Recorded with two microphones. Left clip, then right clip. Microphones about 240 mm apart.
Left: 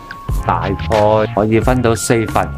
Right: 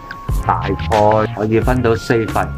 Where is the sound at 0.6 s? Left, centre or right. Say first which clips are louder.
Left 2 dB; centre.